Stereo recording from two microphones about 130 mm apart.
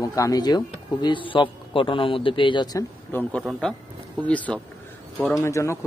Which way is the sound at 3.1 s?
15° left (ahead or behind).